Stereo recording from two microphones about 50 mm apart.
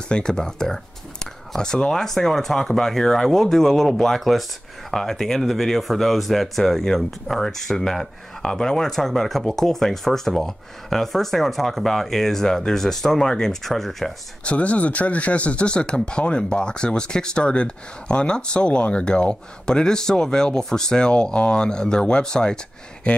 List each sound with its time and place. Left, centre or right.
0.1 s speech: centre
14.4 s speech: left